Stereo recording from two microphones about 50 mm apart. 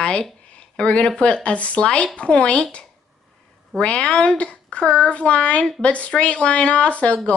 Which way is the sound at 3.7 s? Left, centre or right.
Centre.